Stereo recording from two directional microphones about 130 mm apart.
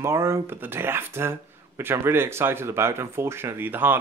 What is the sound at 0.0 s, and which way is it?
Speech, 20° right (ahead or behind).